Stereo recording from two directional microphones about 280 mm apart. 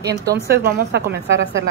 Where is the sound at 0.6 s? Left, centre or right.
Right.